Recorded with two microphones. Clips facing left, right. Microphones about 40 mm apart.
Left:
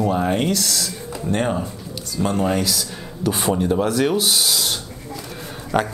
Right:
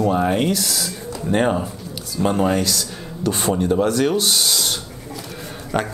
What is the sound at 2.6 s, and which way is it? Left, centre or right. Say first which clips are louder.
Speech: right 1 dB; centre.